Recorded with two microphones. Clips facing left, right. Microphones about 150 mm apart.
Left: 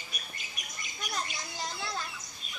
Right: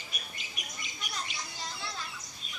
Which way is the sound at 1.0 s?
45° left (ahead or behind).